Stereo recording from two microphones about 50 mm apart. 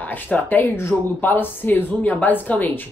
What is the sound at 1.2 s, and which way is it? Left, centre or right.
Speech, left.